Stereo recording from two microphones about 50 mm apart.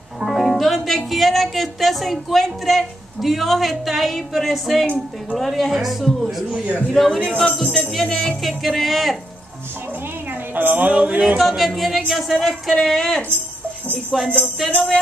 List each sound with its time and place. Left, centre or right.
0.2 s music: centre
4.9 s speech: centre
10.5 s speech: right
10.9 s music: right
11.3 s speech: centre
12.8 s speech: centre
14.1 s speech: centre
14.7 s music: left